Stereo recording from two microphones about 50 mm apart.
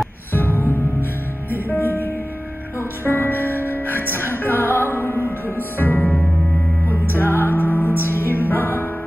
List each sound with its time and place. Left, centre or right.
0.3 s music: left
5.8 s music: left
6.9 s music: left